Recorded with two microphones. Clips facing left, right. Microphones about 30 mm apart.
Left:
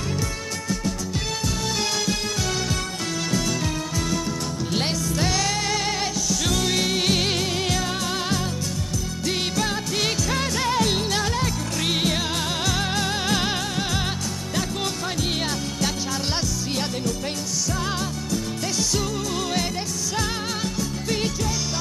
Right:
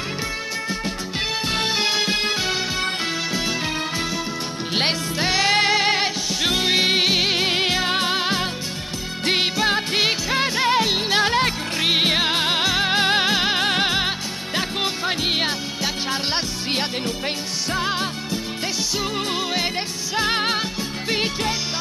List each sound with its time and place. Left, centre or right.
1.6 s music: right
4.7 s music: right
7.4 s music: right
13.3 s music: right
13.6 s music: right
17.7 s music: right
20.2 s music: right